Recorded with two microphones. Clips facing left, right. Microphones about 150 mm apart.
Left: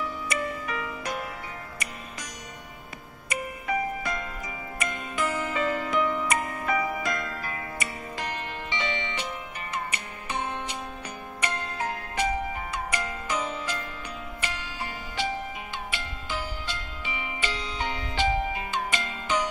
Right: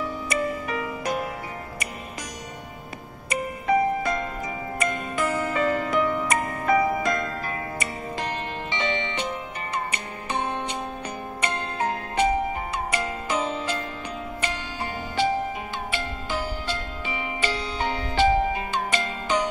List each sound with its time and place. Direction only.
0.3 s music: 30° right (ahead or behind)
3.6 s music: 35° right (ahead or behind)